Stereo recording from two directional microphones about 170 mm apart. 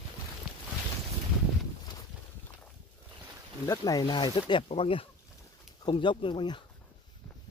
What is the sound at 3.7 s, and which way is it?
Speech, 20° left (ahead or behind).